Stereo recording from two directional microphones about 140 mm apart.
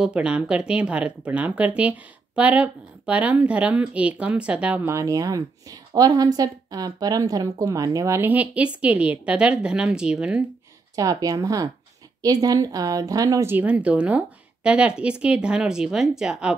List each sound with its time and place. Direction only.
0.0 s speech: 10° right (ahead or behind)
4.9 s a woman's voice: 25° right (ahead or behind); by 10.4 s 5° right (ahead or behind)
11.0 s a woman's voice: 25° right (ahead or behind); by 16.5 s 5° right (ahead or behind)